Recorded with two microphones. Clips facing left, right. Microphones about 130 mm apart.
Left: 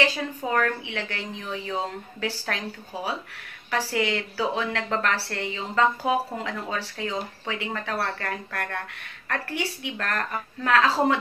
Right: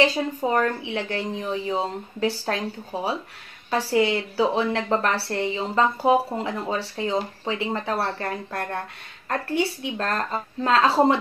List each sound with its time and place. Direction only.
0.0 s a woman's voice: 25° right (ahead or behind)